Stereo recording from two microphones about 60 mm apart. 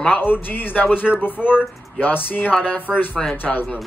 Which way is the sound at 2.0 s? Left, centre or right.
Left.